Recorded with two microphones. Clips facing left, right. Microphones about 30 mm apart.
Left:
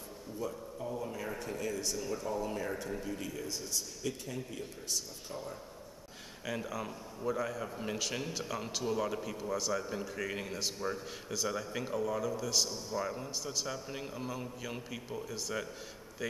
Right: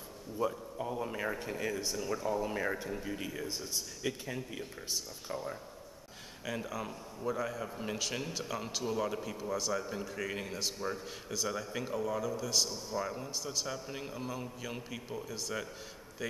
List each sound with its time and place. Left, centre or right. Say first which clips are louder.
0.4 s speech: right 5 dB; right
6.4 s a man's voice: even; centre